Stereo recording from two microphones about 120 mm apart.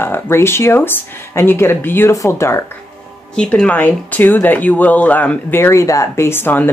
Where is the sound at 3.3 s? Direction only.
5° left (ahead or behind).